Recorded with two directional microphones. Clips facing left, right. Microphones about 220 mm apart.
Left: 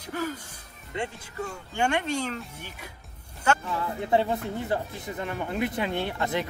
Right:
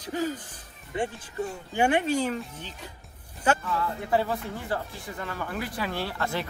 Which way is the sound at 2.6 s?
10° left (ahead or behind).